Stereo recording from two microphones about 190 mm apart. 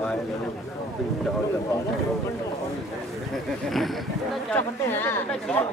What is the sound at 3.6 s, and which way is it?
Speech, centre (ahead or behind).